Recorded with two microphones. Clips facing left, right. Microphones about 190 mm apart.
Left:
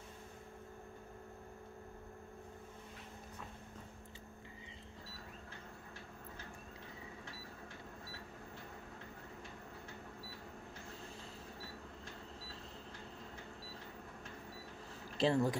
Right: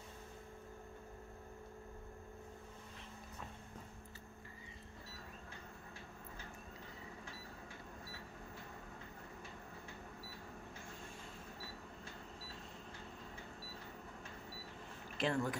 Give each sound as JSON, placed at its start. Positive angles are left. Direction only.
{"t": 15.1, "sound": "speech", "side_deg": 30}